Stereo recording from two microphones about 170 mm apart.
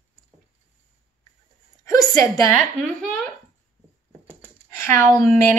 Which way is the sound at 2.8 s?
5° left (ahead or behind).